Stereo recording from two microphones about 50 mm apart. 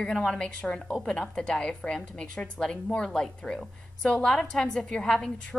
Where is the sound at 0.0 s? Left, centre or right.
Centre.